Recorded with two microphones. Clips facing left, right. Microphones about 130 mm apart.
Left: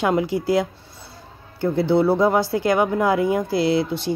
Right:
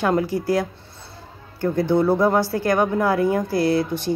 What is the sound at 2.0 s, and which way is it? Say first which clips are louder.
Speech: even; 10° left (ahead or behind).